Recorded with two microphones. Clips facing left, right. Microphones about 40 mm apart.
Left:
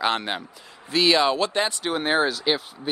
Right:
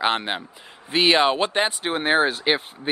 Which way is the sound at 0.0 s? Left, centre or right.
Right.